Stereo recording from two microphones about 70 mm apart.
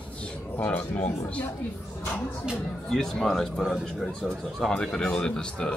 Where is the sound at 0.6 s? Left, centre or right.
Left.